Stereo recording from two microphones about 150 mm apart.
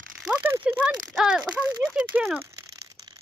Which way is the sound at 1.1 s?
5° right (ahead or behind).